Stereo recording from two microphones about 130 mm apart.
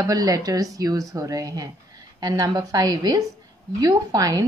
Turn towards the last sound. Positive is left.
turn(degrees=-25)  # may be behind; listen again after turning